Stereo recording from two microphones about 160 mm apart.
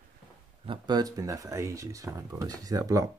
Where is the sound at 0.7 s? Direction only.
25° right (ahead or behind).